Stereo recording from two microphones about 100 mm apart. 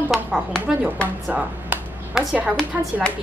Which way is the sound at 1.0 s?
15° right (ahead or behind).